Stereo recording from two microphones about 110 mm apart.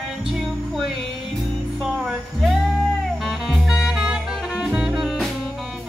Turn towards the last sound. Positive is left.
turn(degrees=0)  # may be behind; listen again after turning